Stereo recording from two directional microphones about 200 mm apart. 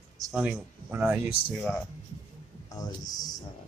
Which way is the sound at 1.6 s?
5° left (ahead or behind).